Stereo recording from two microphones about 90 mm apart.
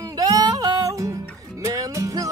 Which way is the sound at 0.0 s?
40° right (ahead or behind).